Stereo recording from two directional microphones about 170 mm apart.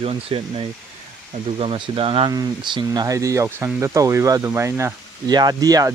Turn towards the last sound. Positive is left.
turn(degrees=-20)  # may be behind; listen again after turning